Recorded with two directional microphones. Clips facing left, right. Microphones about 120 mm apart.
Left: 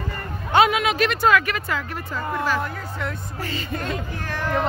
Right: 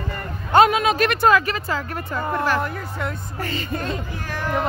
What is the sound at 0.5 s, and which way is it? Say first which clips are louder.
Speech: right 3 dB; 40° right (ahead or behind).